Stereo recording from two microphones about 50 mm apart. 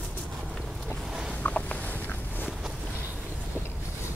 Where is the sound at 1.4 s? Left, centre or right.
Left.